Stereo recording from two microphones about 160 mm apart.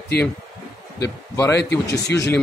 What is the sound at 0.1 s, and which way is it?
Speech, 80° left.